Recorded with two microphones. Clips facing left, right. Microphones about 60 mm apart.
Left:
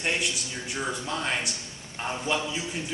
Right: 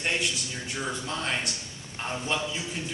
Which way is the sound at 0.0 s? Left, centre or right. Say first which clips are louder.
Even; centre.